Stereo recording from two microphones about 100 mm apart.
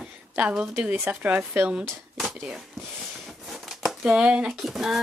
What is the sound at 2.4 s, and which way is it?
Speech, 5° right (ahead or behind).